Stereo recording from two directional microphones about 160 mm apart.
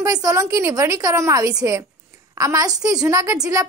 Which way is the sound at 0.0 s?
20° right (ahead or behind).